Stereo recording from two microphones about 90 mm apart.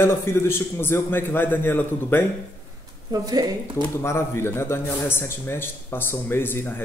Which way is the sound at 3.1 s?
45° right (ahead or behind).